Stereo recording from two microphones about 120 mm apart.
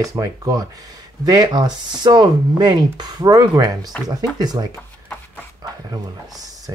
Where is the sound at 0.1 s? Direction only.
30° right (ahead or behind).